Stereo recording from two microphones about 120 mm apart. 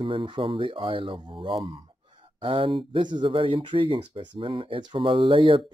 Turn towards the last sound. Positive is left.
turn(degrees=-45)  # may be behind; listen again after turning